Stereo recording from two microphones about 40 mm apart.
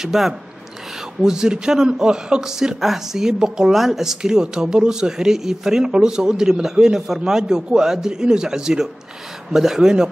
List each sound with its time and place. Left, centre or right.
0.0 s speech: centre
3.7 s speech: centre